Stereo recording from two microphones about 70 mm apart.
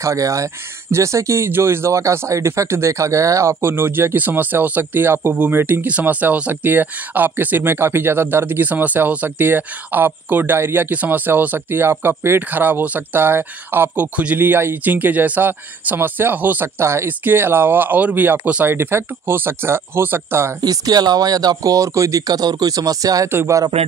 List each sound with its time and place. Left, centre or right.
0.0 s speech: right
20.6 s speech: right
23.2 s speech: right